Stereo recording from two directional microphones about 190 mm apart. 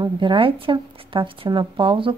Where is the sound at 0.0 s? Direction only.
25° right (ahead or behind).